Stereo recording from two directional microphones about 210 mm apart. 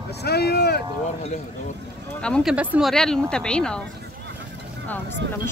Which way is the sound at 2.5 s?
5° right (ahead or behind).